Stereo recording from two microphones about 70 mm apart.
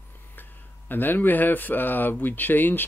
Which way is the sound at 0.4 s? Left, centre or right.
Left.